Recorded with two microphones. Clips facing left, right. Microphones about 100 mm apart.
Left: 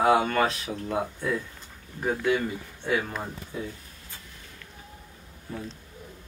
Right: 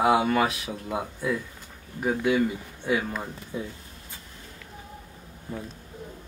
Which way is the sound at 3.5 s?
20° right (ahead or behind).